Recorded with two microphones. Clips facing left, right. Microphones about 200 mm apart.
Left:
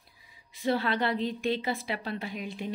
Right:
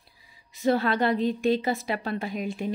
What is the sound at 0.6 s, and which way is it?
A woman's voice, 45° right (ahead or behind).